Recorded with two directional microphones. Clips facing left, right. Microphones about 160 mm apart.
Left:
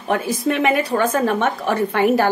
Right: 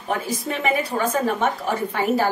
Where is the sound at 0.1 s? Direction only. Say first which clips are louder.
Left 6 dB; 70° left (ahead or behind).